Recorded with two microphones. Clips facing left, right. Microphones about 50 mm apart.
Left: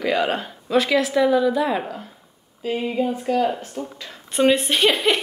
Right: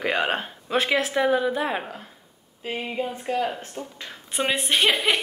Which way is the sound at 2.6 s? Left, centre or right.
Centre.